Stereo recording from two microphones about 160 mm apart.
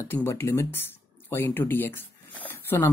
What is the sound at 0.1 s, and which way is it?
Speech, 15° left (ahead or behind).